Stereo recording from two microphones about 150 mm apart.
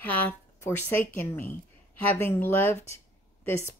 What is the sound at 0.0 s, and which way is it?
Speech, 10° left (ahead or behind).